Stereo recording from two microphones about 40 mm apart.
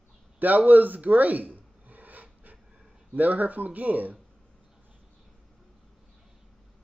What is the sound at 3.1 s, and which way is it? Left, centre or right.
Speech, right.